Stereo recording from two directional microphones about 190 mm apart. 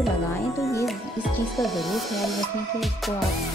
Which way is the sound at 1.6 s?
Centre (ahead or behind).